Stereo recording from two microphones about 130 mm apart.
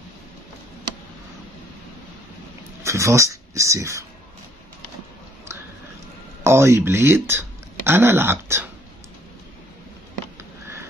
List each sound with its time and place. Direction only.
2.8 s speech: 20° right (ahead or behind)
6.4 s speech: 20° right (ahead or behind)